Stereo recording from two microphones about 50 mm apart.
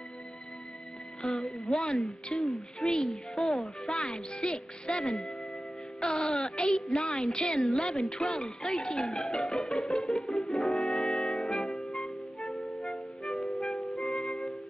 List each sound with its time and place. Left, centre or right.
1.2 s a woman's voice: centre
10.8 s music: centre
14.1 s music: centre